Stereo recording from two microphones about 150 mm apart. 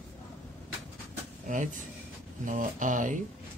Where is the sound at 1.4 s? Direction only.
55° right (ahead or behind).